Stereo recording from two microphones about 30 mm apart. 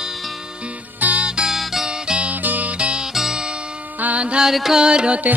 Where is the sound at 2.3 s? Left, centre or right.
Right.